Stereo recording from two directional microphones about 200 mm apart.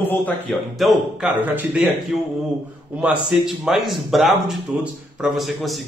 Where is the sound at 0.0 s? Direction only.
10° left (ahead or behind).